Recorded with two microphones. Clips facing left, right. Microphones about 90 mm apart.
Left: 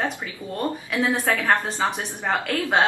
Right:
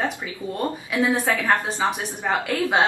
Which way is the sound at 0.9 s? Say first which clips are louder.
Right 2 dB; 20° right (ahead or behind).